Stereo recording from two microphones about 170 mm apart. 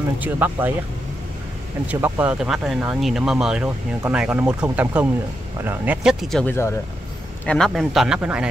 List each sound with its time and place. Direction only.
0.2 s speech: 10° right (ahead or behind)
1.9 s speech: 10° right (ahead or behind)
6.2 s speech: 5° left (ahead or behind)